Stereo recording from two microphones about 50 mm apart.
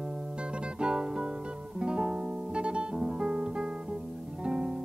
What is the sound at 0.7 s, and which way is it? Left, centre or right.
Music, centre.